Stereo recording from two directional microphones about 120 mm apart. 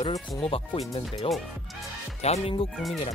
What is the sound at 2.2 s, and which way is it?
Speech, 55° left (ahead or behind).